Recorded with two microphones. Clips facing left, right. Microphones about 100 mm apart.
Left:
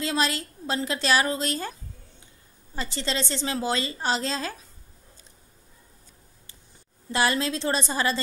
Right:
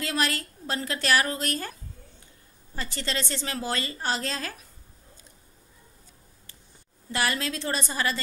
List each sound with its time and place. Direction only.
0.0 s a woman's voice: 20° left (ahead or behind)
7.1 s a woman's voice: 25° left (ahead or behind)